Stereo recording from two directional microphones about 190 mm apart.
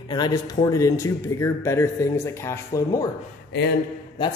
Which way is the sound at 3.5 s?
65° left (ahead or behind).